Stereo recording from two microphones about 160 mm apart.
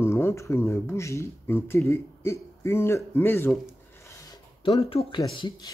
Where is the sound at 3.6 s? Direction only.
20° left (ahead or behind).